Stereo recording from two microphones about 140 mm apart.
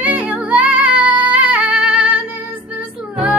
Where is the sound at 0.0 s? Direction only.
10° right (ahead or behind).